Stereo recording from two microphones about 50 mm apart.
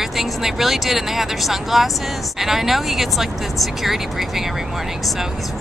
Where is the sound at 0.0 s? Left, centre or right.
Centre.